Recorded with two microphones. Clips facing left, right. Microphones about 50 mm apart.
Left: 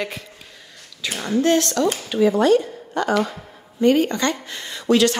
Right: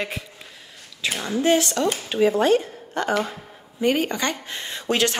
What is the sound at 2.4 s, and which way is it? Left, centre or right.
Speech, right.